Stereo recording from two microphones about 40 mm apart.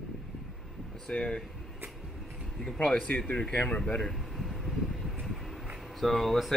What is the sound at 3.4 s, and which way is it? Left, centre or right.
Speech, left.